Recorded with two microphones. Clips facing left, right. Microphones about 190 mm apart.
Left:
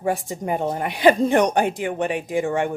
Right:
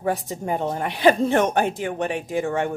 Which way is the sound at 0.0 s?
10° left (ahead or behind).